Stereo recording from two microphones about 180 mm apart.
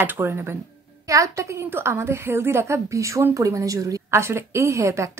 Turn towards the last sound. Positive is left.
turn(degrees=-15)  # may be behind; listen again after turning